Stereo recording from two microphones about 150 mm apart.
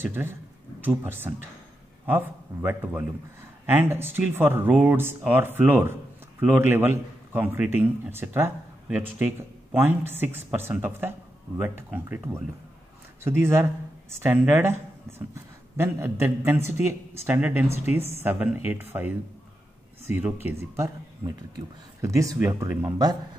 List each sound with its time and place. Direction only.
0.0 s speech: 15° right (ahead or behind)
13.4 s speech: 15° right (ahead or behind)
22.0 s speech: 20° right (ahead or behind)